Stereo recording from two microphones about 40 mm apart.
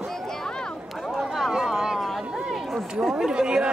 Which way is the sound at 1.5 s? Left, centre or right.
Centre.